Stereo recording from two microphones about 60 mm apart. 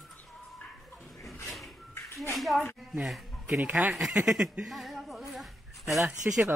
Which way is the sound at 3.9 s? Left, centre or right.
Centre.